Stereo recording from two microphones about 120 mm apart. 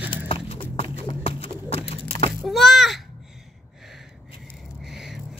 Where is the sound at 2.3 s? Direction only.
Centre (ahead or behind).